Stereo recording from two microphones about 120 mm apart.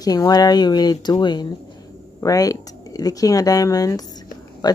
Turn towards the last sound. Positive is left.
turn(degrees=35)  # may be behind; listen again after turning